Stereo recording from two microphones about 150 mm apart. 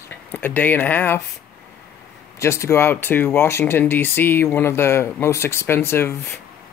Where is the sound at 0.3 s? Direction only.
10° left (ahead or behind).